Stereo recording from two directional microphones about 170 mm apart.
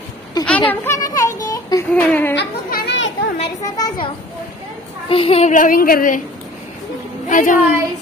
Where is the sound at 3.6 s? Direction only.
20° left (ahead or behind).